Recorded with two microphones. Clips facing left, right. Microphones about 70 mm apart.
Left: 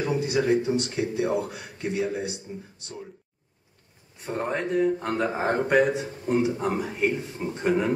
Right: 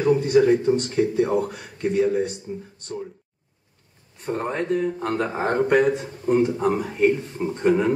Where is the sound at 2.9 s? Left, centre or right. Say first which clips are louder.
Right 8 dB; centre.